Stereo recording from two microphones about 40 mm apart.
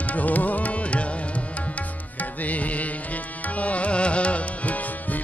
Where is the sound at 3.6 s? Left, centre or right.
Left.